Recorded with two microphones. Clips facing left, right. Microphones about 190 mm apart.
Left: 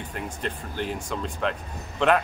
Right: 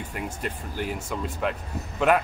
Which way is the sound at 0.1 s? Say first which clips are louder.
Left 1 dB; 10° right (ahead or behind).